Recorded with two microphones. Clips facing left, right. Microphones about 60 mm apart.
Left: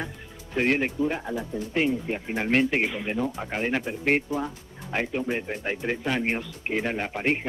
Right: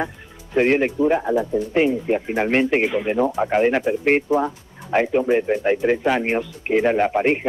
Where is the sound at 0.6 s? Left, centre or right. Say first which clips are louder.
Right 7 dB; right.